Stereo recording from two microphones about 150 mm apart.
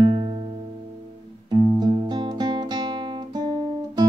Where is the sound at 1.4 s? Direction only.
25° right (ahead or behind).